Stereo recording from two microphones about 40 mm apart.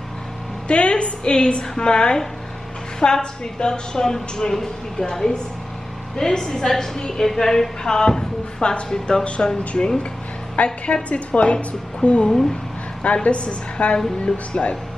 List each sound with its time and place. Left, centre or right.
0.7 s a woman's voice: left
10.5 s a woman's voice: left